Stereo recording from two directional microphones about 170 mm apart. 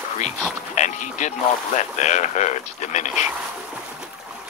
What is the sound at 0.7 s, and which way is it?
Speech, 45° left (ahead or behind).